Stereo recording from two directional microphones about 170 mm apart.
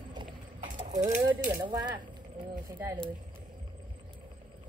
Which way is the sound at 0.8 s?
45° right (ahead or behind).